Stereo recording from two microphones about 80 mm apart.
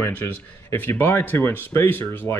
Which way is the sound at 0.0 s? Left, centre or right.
Left.